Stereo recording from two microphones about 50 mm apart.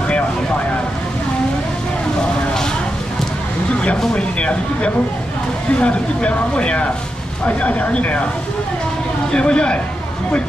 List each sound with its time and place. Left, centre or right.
4.1 s a sound: left
5.8 s speech: left
9.3 s speech: centre